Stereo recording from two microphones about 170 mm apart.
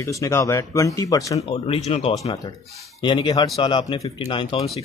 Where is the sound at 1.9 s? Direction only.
35° left (ahead or behind).